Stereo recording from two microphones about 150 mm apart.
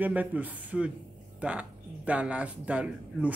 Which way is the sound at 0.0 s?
10° right (ahead or behind).